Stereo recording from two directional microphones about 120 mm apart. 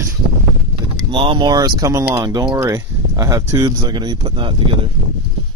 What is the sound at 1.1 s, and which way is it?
Speech, 45° right (ahead or behind).